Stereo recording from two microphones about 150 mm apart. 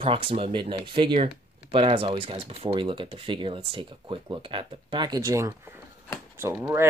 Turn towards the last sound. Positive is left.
turn(degrees=-15)  # may be behind; listen again after turning